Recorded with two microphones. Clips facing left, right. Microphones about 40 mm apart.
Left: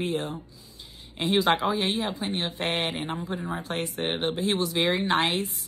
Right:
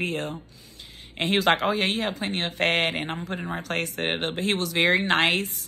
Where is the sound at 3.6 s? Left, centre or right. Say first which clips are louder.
Right 2 dB; right.